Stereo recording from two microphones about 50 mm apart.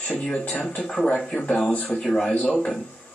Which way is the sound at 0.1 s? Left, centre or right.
Centre.